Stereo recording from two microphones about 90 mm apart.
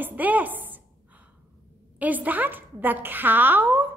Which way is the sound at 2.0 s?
20° right (ahead or behind).